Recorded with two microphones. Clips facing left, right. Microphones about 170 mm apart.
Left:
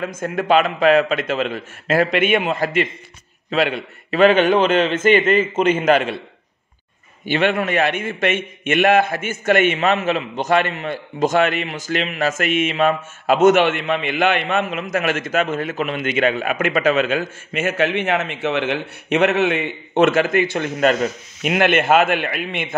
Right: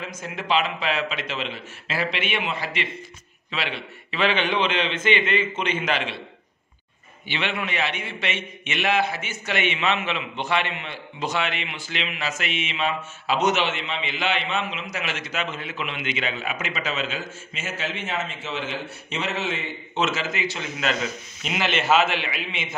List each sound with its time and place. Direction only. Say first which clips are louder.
0.0 s a man's voice: left 10 dB; 50° left (ahead or behind)
7.2 s a man's voice: left 10 dB; 45° left (ahead or behind)